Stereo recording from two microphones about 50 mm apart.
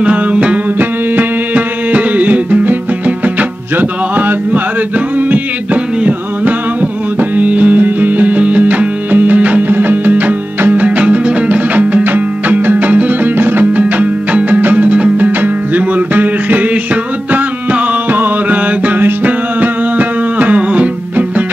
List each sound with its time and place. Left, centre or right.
0.0 s music: right
7.2 s music: right